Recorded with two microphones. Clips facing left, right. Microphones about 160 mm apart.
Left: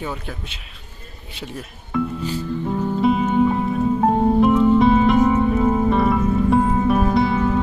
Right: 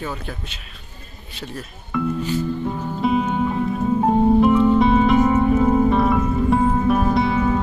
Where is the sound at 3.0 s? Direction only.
Centre (ahead or behind).